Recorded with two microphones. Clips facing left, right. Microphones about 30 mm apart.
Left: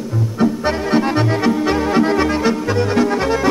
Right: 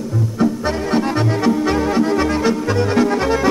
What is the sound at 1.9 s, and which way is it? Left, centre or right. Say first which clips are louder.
Accordion: left 2 dB; left.